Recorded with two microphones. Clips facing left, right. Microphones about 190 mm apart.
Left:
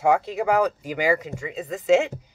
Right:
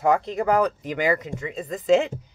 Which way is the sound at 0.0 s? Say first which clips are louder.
Even; 5° left (ahead or behind).